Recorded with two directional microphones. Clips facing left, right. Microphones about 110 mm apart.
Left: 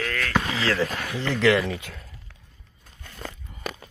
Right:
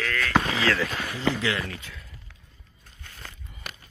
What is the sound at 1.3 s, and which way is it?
Speech, 75° left (ahead or behind).